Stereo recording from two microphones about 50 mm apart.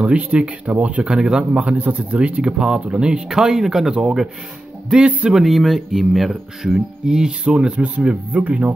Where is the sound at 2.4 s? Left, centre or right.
Centre.